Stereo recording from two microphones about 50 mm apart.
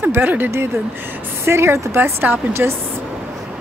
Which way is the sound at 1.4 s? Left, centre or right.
Right.